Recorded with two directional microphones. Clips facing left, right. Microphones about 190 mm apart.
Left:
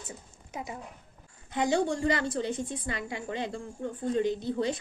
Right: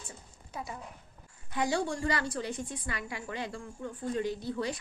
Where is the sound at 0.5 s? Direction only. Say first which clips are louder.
Left 2 dB; 20° left (ahead or behind).